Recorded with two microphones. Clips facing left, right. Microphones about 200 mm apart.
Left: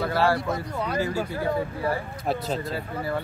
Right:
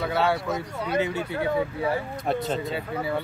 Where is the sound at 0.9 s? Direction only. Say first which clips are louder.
Right 3 dB; 70° right (ahead or behind).